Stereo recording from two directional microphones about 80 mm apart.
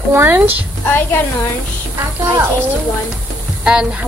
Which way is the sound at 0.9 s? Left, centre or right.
Left.